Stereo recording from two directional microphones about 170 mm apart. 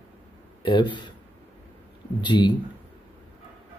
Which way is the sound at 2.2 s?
25° left (ahead or behind).